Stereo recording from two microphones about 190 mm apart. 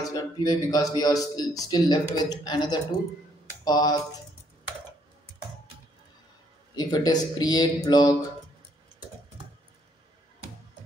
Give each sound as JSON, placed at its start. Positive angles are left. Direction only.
{"t": 0.0, "sound": "speech", "side_deg": 20}
{"t": 6.7, "sound": "speech", "side_deg": 20}